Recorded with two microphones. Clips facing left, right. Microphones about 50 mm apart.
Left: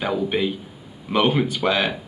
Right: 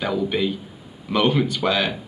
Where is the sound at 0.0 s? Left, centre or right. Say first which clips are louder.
Even; centre.